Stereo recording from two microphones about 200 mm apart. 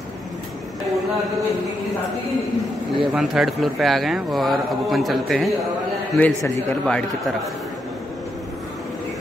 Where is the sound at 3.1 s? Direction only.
Centre (ahead or behind).